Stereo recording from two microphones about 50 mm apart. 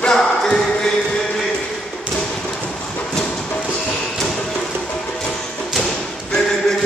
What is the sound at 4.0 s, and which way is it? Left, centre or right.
Music, centre.